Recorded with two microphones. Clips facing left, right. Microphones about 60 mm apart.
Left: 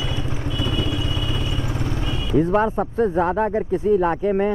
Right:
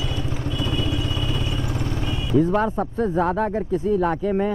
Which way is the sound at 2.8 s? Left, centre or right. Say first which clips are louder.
Left 2 dB; left.